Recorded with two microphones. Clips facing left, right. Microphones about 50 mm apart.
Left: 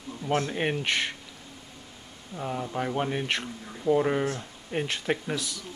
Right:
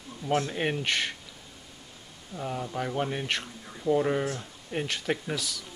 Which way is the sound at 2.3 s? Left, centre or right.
Centre.